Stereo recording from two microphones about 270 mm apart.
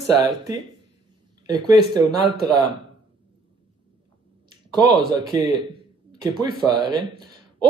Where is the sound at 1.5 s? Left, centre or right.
Centre.